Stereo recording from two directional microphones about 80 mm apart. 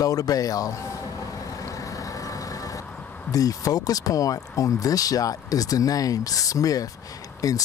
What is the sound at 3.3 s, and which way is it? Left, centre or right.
Speech, left.